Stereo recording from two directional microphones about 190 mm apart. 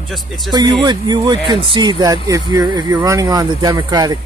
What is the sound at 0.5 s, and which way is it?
Speech, 20° right (ahead or behind).